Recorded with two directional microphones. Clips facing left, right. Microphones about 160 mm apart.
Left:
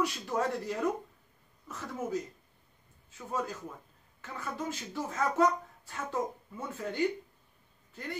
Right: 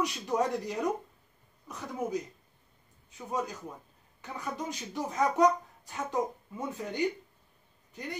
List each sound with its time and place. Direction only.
0.0 s speech: 15° right (ahead or behind)